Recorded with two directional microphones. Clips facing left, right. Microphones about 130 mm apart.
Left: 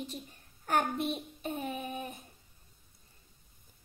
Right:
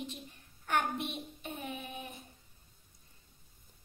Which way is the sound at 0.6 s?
40° left (ahead or behind).